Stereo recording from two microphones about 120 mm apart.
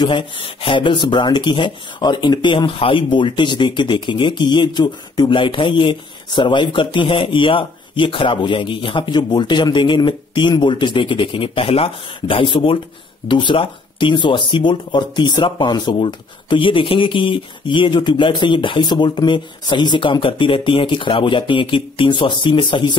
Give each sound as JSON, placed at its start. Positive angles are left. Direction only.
{"t": 0.0, "sound": "speech", "side_deg": 45}